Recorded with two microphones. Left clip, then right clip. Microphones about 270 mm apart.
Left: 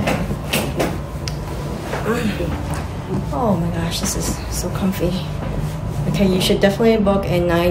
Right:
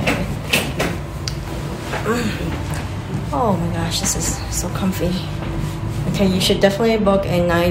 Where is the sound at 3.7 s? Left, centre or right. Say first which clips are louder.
Right 1 dB; centre.